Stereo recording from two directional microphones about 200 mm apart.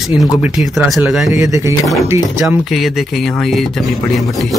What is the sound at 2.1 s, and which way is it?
Speech, 15° right (ahead or behind).